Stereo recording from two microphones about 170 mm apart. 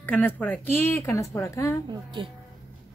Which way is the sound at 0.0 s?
10° left (ahead or behind).